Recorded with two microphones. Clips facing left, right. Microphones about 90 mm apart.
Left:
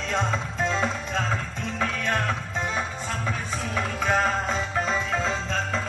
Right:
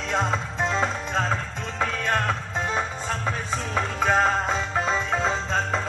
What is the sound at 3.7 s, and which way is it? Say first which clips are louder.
Music: right 2 dB; 35° right (ahead or behind).